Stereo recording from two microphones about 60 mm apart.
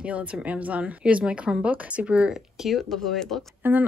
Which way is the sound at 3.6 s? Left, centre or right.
Right.